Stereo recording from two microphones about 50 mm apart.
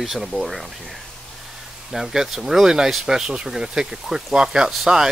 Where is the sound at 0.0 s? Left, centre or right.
Centre.